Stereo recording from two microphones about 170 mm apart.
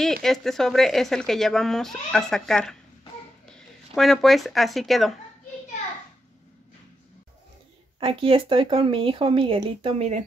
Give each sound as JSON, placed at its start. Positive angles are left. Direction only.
{"t": 0.2, "sound": "speech", "side_deg": 0}
{"t": 8.0, "sound": "speech", "side_deg": -35}